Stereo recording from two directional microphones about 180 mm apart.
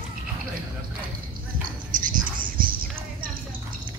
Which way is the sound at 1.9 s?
50° right (ahead or behind).